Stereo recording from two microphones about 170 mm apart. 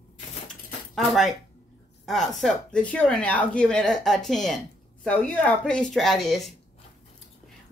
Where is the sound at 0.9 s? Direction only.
Centre (ahead or behind).